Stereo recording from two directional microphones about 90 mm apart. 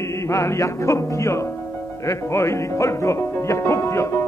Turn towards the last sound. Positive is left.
turn(degrees=30)  # may be behind; listen again after turning